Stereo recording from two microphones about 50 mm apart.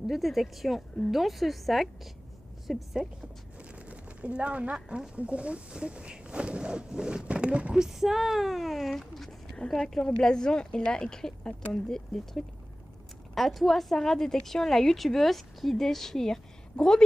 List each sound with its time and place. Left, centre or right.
0.0 s a woman's voice: centre
3.9 s speech: right
4.7 s speech: centre
7.8 s speech: centre